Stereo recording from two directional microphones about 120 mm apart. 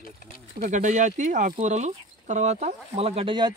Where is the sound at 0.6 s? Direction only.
90° right; by 3.3 s 55° right (ahead or behind).